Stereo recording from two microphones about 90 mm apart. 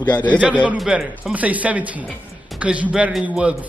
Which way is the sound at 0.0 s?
55° left (ahead or behind).